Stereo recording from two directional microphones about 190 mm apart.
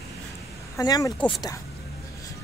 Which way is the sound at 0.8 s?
20° left (ahead or behind).